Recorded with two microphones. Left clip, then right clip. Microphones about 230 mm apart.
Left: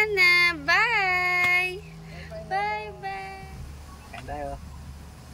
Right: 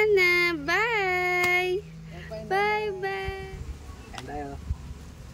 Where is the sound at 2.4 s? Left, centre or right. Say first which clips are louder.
Right 3 dB; centre.